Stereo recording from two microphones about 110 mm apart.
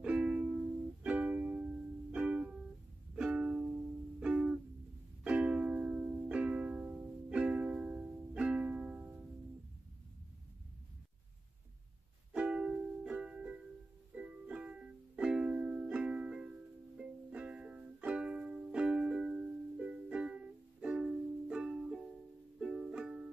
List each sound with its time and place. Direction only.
0.0 s music: 10° right (ahead or behind)
12.3 s music: 10° right (ahead or behind)